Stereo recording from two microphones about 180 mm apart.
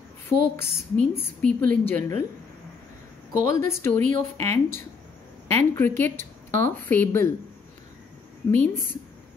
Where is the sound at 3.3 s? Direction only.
15° left (ahead or behind).